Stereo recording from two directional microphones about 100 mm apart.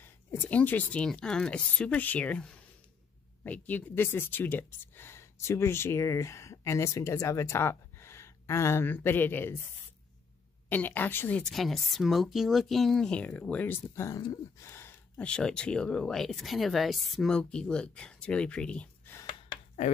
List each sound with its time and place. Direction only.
0.0 s speech: 20° left (ahead or behind)
10.7 s speech: 20° left (ahead or behind)
11.5 s speech: centre (ahead or behind); by 15.0 s 25° left (ahead or behind)
15.1 s speech: 10° left (ahead or behind)